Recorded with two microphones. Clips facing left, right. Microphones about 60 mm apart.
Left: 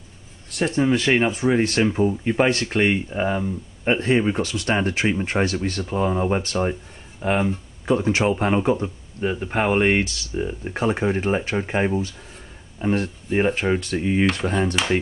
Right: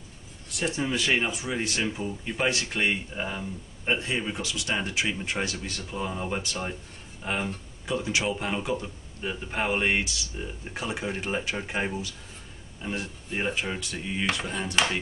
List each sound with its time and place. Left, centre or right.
0.6 s speech: left
12.8 s speech: left
13.3 s speech: left